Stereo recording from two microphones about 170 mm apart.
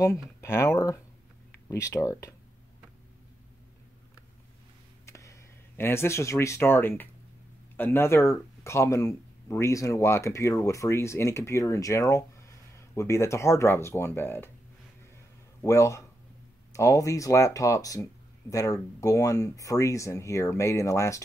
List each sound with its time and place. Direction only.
0.0 s speech: 15° left (ahead or behind)
5.0 s speech: 15° left (ahead or behind)
15.6 s a man's voice: 20° left (ahead or behind)